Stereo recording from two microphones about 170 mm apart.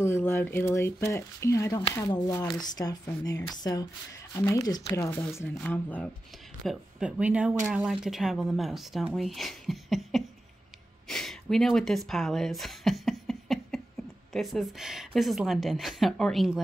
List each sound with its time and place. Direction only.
0.0 s speech: 15° left (ahead or behind)
6.6 s speech: 5° right (ahead or behind)